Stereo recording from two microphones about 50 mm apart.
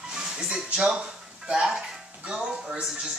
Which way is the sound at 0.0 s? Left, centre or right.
Centre.